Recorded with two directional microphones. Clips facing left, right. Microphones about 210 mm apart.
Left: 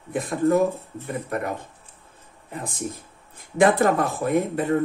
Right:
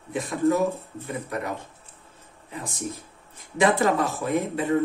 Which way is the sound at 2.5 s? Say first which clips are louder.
Left 2 dB; 55° left (ahead or behind).